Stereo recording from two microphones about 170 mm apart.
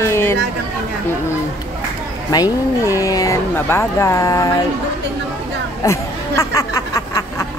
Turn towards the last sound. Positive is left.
turn(degrees=20)  # may be behind; listen again after turning